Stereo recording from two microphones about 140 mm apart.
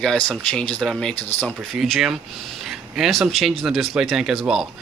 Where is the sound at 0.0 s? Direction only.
5° left (ahead or behind).